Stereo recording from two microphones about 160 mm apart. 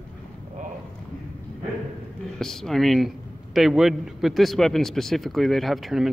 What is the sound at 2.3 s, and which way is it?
A man's voice, 5° left (ahead or behind).